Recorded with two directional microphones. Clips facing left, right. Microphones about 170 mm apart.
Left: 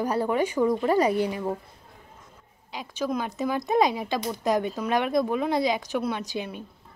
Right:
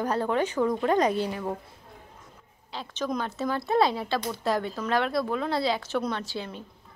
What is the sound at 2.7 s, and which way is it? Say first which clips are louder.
A woman's voice: left 2 dB; 10° left (ahead or behind).